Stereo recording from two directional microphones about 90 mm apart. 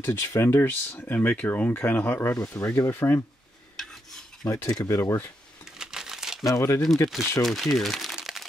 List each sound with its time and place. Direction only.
0.0 s speech: 30° left (ahead or behind)
3.7 s filing: 5° left (ahead or behind)
4.7 s speech: 40° left (ahead or behind)
5.0 s speech: 25° left (ahead or behind)
5.8 s crumpling: 5° right (ahead or behind)
6.4 s speech: 30° left (ahead or behind)
7.4 s speech: centre (ahead or behind)
8.2 s crack: 5° right (ahead or behind)